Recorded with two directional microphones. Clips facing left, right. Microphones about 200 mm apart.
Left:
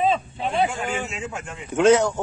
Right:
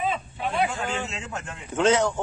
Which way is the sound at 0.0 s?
25° left (ahead or behind).